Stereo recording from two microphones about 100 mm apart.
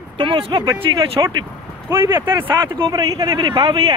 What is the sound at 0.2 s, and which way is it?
Speech, 55° right (ahead or behind).